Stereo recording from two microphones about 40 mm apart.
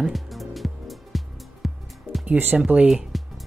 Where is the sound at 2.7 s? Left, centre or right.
Right.